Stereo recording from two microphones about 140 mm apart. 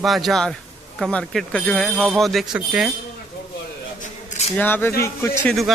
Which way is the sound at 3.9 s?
60° left (ahead or behind).